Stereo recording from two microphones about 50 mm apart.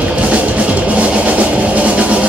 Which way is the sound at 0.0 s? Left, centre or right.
Right.